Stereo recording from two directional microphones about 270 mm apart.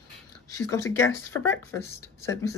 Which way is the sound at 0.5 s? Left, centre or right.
Centre.